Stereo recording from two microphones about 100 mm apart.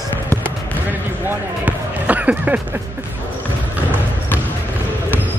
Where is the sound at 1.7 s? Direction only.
15° right (ahead or behind).